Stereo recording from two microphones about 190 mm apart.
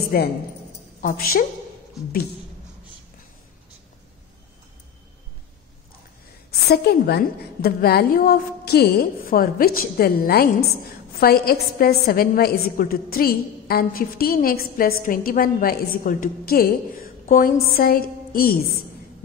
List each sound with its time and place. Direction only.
0.1 s a woman's voice: 50° left (ahead or behind)
6.7 s a woman's voice: 55° left (ahead or behind)